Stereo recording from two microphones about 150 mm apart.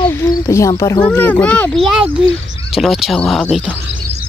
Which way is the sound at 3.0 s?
Centre (ahead or behind).